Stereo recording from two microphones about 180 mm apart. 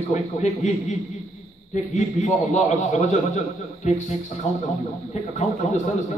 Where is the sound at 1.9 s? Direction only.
40° left (ahead or behind).